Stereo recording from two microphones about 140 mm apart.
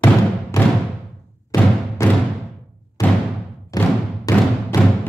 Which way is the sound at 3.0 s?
25° left (ahead or behind).